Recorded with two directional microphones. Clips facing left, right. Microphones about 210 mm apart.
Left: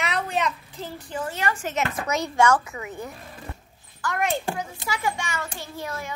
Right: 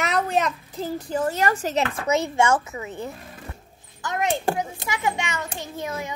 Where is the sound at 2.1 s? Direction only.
25° right (ahead or behind).